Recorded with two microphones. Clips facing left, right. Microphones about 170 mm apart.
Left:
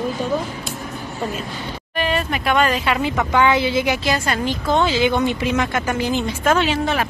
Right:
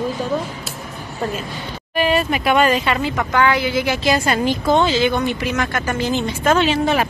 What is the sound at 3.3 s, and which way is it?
Speech, 20° left (ahead or behind).